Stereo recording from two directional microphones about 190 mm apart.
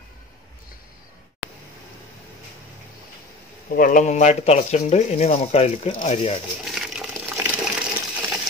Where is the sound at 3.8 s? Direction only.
45° left (ahead or behind).